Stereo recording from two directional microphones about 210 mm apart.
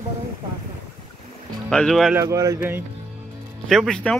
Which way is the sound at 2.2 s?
15° right (ahead or behind).